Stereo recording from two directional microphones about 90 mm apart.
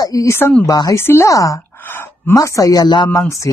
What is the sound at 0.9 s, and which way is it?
Speech, 25° left (ahead or behind).